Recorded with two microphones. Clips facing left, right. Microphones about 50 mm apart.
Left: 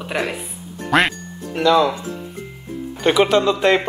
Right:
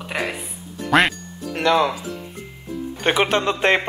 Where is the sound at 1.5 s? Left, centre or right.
Right.